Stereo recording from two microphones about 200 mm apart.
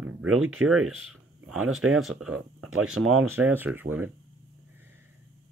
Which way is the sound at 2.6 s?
90° right.